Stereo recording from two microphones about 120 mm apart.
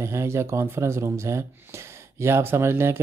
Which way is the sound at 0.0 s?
25° right (ahead or behind).